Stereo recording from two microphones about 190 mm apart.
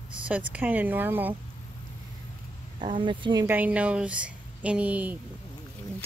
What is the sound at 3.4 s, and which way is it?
A woman's voice, 10° right (ahead or behind).